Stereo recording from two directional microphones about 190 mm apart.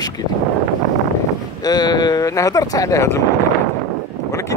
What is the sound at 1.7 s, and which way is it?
Speech, 20° left (ahead or behind).